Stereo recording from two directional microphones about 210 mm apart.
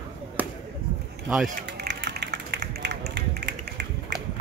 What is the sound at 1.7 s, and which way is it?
Run, 60° right (ahead or behind).